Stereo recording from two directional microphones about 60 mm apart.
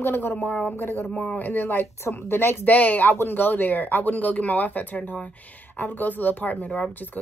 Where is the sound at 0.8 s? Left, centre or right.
Left.